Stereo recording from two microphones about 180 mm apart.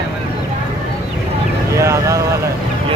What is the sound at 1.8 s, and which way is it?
Speech, 15° right (ahead or behind).